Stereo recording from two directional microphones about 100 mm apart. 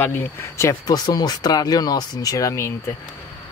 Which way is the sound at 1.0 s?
45° left (ahead or behind).